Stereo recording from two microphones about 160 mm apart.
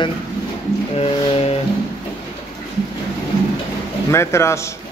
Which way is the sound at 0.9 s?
40° left (ahead or behind).